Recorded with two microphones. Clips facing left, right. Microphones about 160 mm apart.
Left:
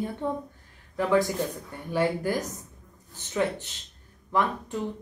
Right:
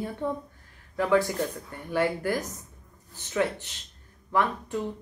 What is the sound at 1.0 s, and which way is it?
A woman's voice, 20° left (ahead or behind).